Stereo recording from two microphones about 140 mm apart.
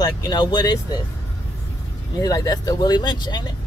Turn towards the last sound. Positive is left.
turn(degrees=30)  # may be behind; listen again after turning